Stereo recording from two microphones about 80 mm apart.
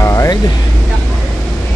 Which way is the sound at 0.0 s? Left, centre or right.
Left.